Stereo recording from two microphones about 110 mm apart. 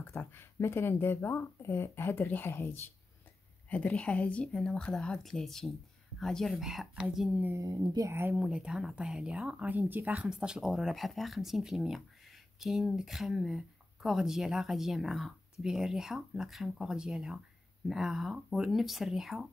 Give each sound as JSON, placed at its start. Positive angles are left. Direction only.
{"t": 0.0, "sound": "a woman's voice", "side_deg": 20}
{"t": 7.5, "sound": "speech", "side_deg": -35}
{"t": 8.1, "sound": "speech", "side_deg": -20}
{"t": 8.4, "sound": "speech", "side_deg": -10}